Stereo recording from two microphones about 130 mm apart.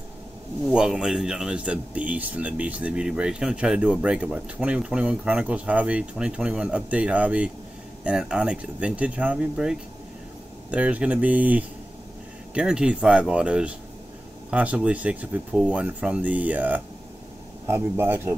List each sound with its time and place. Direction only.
0.7 s a man's voice: 5° right (ahead or behind)